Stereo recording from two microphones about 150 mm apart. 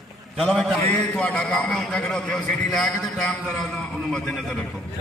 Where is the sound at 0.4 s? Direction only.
Centre (ahead or behind).